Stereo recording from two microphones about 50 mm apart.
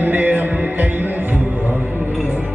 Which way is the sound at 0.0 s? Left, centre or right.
Right.